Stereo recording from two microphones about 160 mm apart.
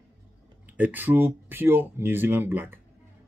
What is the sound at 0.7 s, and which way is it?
Speech, 10° right (ahead or behind).